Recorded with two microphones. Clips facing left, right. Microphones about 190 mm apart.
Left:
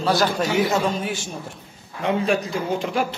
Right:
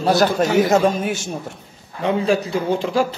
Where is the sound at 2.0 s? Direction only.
30° right (ahead or behind).